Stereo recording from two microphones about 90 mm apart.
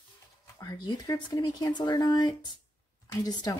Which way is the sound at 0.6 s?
50° left (ahead or behind).